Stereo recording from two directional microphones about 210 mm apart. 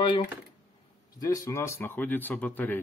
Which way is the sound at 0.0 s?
25° left (ahead or behind).